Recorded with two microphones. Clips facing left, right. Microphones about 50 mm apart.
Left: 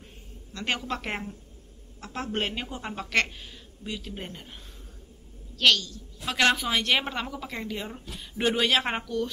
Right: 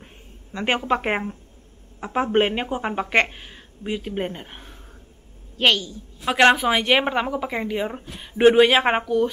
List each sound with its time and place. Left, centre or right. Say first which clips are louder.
0.0 s a woman's voice: right 2 dB; right
5.6 s a woman's voice: right 3 dB; right